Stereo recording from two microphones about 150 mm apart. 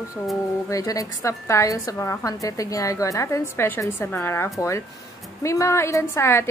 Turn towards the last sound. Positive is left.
turn(degrees=15)  # may be behind; listen again after turning